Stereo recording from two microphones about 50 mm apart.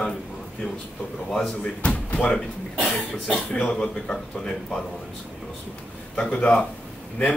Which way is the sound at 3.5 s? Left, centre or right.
Left.